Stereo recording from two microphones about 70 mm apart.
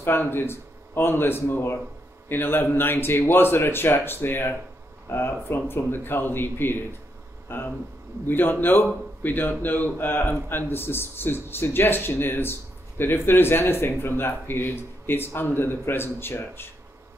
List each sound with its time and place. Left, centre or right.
0.0 s speech: left